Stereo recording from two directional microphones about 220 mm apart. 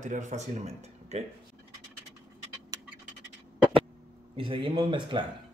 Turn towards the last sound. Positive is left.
turn(degrees=-20)  # may be behind; listen again after turning